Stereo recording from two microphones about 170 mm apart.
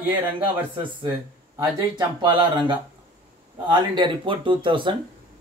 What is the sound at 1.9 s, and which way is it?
Speech, 25° right (ahead or behind).